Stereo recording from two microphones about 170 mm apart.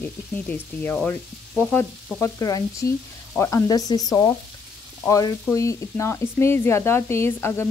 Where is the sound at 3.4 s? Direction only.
15° left (ahead or behind).